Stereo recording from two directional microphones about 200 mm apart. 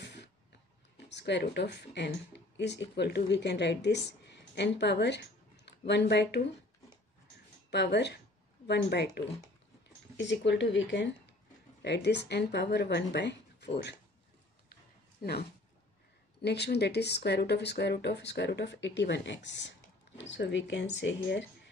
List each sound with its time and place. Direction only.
0.0 s a sound: 60° left (ahead or behind)
0.9 s speech: 60° left (ahead or behind)
7.7 s speech: 60° left (ahead or behind)
16.4 s speech: 55° left (ahead or behind)